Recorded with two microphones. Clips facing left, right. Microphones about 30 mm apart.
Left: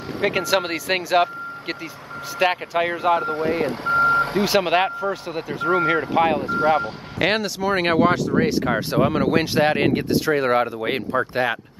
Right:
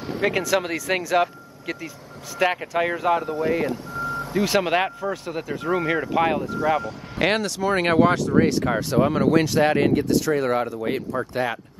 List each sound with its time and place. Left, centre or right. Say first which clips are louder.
0.2 s speech: left 1 dB; centre
3.6 s reversing beeps: left 8 dB; left
4.5 s speech: left 2 dB; centre
6.4 s speech: left 4 dB; left
7.2 s speech: left 1 dB; centre; by 11.2 s left